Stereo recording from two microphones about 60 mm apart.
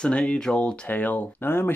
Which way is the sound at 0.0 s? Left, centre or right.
Centre.